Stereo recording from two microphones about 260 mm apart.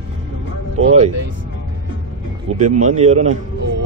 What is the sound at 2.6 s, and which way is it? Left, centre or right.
Speech, right.